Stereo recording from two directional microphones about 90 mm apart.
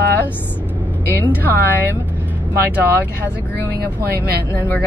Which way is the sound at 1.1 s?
20° right (ahead or behind).